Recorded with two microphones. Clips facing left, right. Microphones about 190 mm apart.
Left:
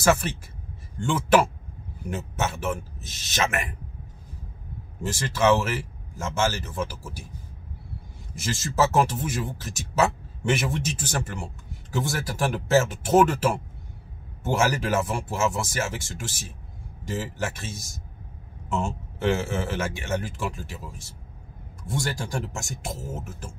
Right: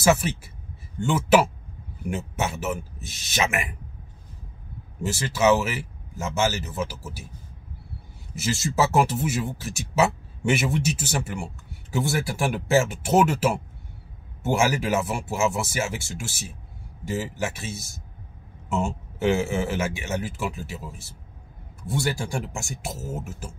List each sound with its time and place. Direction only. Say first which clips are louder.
0.0 s speech: right 1 dB; 10° right (ahead or behind)
5.0 s speech: right 1 dB; 10° right (ahead or behind)
8.4 s speech: right 1 dB; 10° right (ahead or behind)